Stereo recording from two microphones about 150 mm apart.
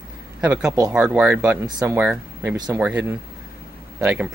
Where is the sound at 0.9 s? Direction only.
5° right (ahead or behind).